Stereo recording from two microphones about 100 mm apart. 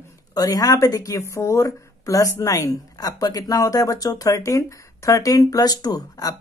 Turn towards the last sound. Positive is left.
turn(degrees=40)  # may be behind; listen again after turning